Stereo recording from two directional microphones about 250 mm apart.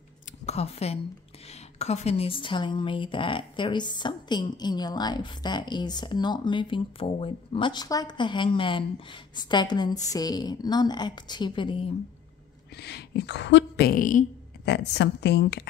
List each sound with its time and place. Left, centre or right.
0.5 s a woman's voice: left
12.7 s a woman's voice: left